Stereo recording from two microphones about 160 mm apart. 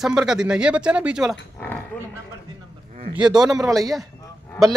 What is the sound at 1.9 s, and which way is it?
Speech, 10° left (ahead or behind).